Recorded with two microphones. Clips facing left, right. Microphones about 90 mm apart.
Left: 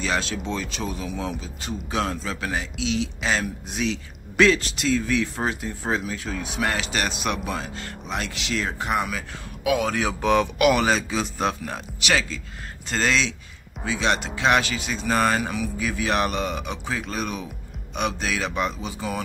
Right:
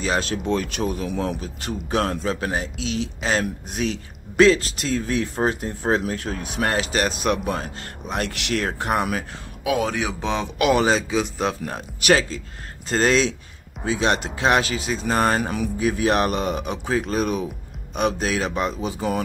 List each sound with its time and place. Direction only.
0.0 s speech: 40° right (ahead or behind)
0.5 s speech: 55° right (ahead or behind)
4.4 s speech: 35° right (ahead or behind); by 6.4 s 55° right (ahead or behind)
6.6 s speech: 35° right (ahead or behind)
9.7 s speech: 30° right (ahead or behind)
9.9 s a man's voice: 20° right (ahead or behind)
11.6 s speech: 35° right (ahead or behind)